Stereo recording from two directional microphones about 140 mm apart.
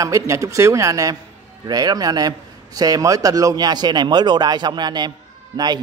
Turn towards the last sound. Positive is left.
turn(degrees=-30)  # may be behind; listen again after turning